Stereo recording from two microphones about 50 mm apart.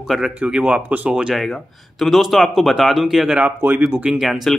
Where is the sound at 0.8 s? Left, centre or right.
Right.